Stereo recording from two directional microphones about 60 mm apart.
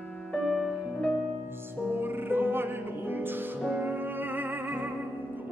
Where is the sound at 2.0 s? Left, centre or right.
Right.